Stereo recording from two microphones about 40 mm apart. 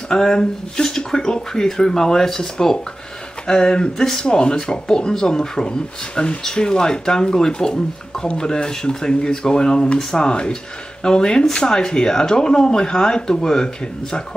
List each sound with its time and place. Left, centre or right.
0.1 s speech: centre